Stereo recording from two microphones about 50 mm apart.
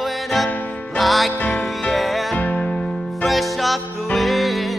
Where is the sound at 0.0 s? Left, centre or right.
Centre.